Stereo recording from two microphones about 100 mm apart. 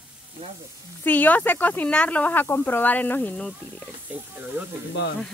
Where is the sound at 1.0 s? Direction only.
15° left (ahead or behind).